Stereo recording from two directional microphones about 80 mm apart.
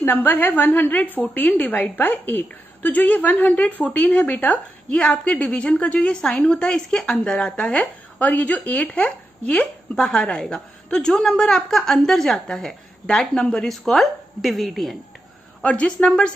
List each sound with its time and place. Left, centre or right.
0.0 s a woman's voice: left; by 15.0 s centre
15.6 s a woman's voice: centre